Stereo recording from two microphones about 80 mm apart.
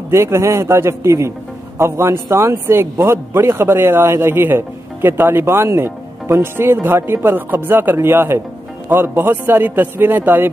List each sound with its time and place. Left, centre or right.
0.1 s speech: right